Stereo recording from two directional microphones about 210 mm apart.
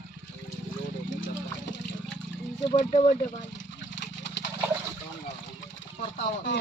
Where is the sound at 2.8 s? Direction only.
35° left (ahead or behind).